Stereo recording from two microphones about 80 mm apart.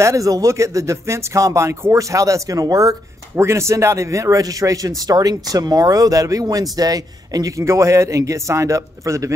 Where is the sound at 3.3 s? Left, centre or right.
Right.